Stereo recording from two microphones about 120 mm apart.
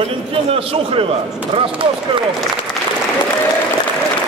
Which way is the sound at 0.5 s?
50° right (ahead or behind).